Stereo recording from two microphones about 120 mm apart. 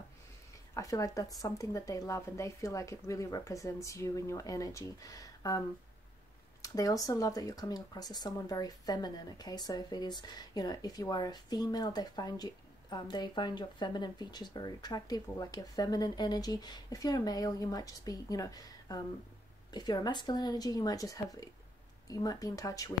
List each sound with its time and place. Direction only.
0.7 s speech: 30° left (ahead or behind)
6.6 s speech: 30° left (ahead or behind)